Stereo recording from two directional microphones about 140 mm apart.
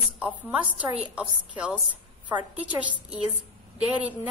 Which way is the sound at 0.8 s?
10° right (ahead or behind).